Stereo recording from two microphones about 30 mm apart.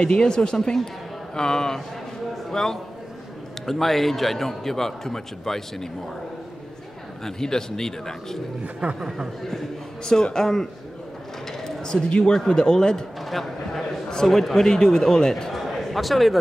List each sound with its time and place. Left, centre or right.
0.0 s a man's voice: left
3.6 s a man's voice: centre
7.2 s a man's voice: centre
8.8 s speech: right
10.0 s a man's voice: left
11.6 s a sound: left
12.4 s a man's voice: left
13.2 s a sound: centre
14.2 s a man's voice: centre
14.7 s a man's voice: left
15.5 s a sound: centre
15.8 s a man's voice: centre